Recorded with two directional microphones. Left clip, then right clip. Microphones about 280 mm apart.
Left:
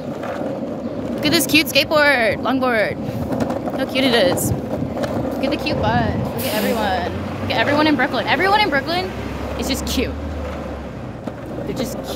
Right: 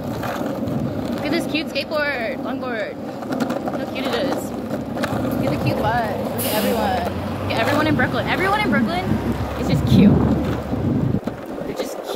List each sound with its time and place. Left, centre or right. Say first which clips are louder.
1.2 s speech: left 8 dB; left
3.9 s speech: left 9 dB; left
7.5 s speech: left 3 dB; centre